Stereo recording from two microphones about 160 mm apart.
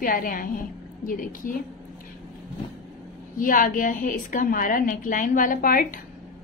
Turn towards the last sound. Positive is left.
turn(degrees=60)  # may be behind; listen again after turning